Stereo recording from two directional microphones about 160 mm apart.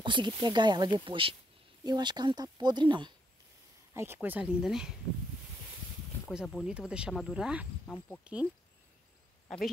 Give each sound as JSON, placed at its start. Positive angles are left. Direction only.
{"t": 0.0, "sound": "speech", "side_deg": -30}
{"t": 3.9, "sound": "speech", "side_deg": -15}
{"t": 6.3, "sound": "speech", "side_deg": 0}
{"t": 7.8, "sound": "speech", "side_deg": 10}
{"t": 8.2, "sound": "speech", "side_deg": -5}
{"t": 9.5, "sound": "speech", "side_deg": 0}